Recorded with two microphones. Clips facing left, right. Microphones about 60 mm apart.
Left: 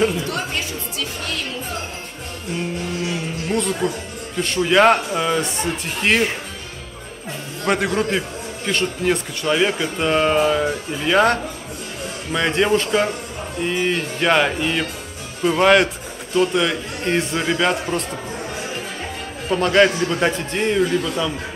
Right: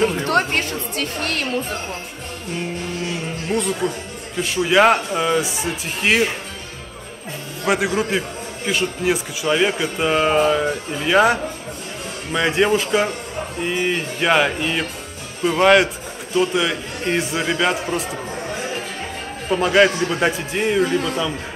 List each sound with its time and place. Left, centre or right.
0.1 s music: right
3.1 s a sound: centre
4.4 s a man's voice: centre
7.6 s a man's voice: centre
19.5 s a man's voice: centre
20.8 s a man's voice: right